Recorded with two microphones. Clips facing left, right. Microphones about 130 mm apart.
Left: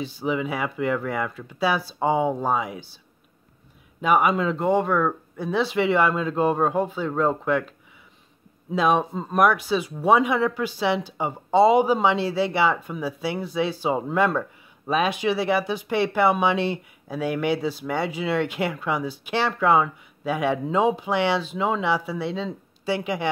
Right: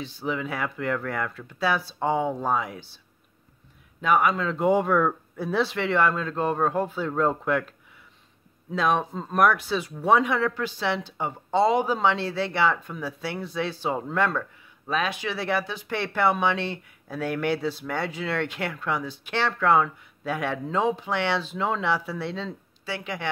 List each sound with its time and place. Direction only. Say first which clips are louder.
0.0 s speech: left 4 dB; 5° left (ahead or behind)
4.0 s speech: left 2 dB; 10° left (ahead or behind)
4.6 s speech: even; 5° right (ahead or behind)
8.7 s speech: left 3 dB; 10° left (ahead or behind)
22.5 s speech: left 7 dB; 15° left (ahead or behind)